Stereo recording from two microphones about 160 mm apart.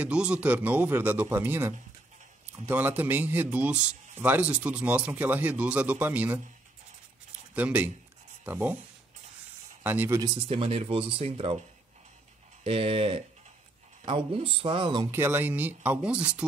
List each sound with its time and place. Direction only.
0.0 s speech: 5° right (ahead or behind)
7.5 s speech: 10° right (ahead or behind)
9.8 s speech: 15° right (ahead or behind)
10.3 s speech: 35° right (ahead or behind)
12.6 s speech: 35° right (ahead or behind)
15.0 s speech: 15° right (ahead or behind)